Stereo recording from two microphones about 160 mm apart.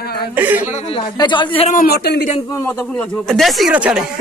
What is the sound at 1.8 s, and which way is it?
Speech, 85° left.